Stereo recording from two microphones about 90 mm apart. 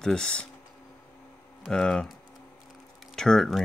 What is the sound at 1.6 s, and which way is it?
Speech, 5° left (ahead or behind).